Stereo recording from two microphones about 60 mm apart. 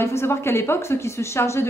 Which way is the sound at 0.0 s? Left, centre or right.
Left.